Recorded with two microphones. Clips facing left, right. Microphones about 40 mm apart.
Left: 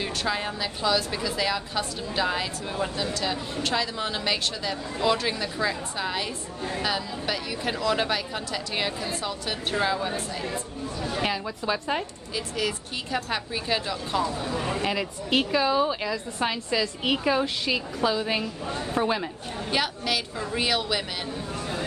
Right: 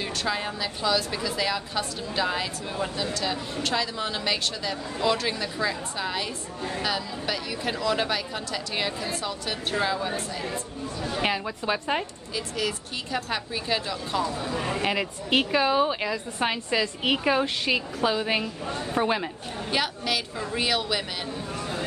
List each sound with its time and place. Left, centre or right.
0.0 s a woman's voice: centre
11.2 s a woman's voice: right
12.4 s a woman's voice: centre
14.5 s speech: centre
14.8 s a woman's voice: right
17.5 s a woman's voice: right
17.7 s a woman's voice: right
19.0 s speech: centre
19.7 s a woman's voice: centre